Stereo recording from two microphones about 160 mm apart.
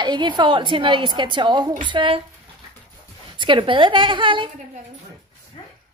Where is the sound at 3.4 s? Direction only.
30° right (ahead or behind).